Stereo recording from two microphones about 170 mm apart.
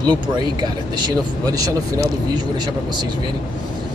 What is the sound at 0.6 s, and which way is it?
Speech, 25° right (ahead or behind).